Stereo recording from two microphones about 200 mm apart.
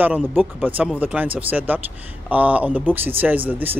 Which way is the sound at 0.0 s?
10° right (ahead or behind).